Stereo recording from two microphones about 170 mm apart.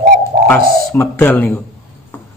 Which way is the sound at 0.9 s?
15° left (ahead or behind).